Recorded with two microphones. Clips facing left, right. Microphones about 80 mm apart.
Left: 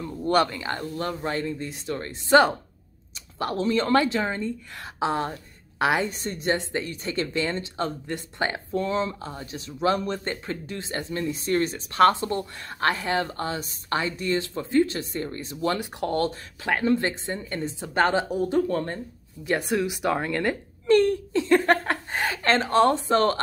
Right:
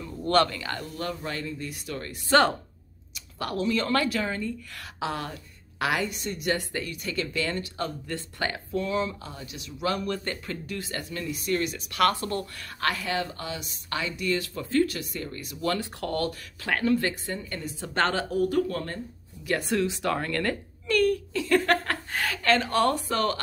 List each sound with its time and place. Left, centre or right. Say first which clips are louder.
0.2 s speech: left 1 dB; centre
3.3 s speech: left 3 dB; left
12.8 s speech: left 4 dB; left
17.8 s speech: left 4 dB; centre
20.8 s speech: left 4 dB; left